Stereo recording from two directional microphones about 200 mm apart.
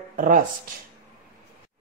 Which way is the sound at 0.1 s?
40° right (ahead or behind).